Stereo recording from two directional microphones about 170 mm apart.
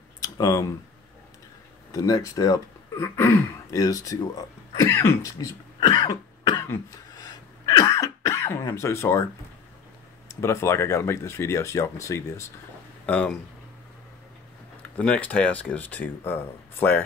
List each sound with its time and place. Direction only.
0.2 s a sound: 20° left (ahead or behind)
1.9 s speech: 20° left (ahead or behind)
6.7 s throat clearing: 20° left (ahead or behind)
10.2 s speech: 15° left (ahead or behind)
15.0 s speech: 5° left (ahead or behind)